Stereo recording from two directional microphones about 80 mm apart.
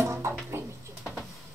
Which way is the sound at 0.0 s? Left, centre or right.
Right.